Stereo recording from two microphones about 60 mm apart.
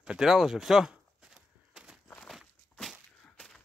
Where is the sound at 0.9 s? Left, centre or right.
Centre.